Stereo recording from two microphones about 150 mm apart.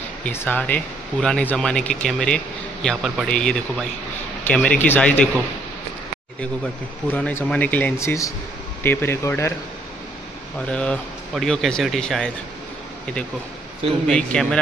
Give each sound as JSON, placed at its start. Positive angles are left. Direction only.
{"t": 0.2, "sound": "speech", "side_deg": 15}
{"t": 7.1, "sound": "speech", "side_deg": 10}
{"t": 10.7, "sound": "speech", "side_deg": 5}
{"t": 14.0, "sound": "speech", "side_deg": 5}